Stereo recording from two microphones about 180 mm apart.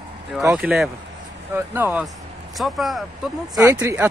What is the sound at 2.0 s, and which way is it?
Speech, centre (ahead or behind).